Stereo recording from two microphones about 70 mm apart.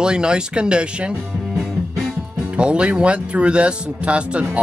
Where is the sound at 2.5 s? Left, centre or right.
Centre.